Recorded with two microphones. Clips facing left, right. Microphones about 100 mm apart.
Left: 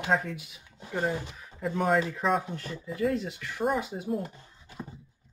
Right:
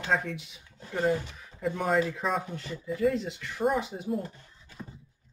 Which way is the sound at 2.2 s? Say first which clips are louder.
Left 3 dB; centre (ahead or behind).